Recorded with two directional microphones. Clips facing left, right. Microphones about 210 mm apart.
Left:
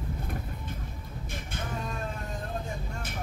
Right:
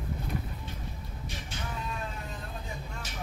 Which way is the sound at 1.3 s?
55° left (ahead or behind).